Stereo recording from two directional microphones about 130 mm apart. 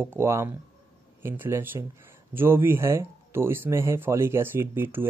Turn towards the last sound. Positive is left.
turn(degrees=-15)  # may be behind; listen again after turning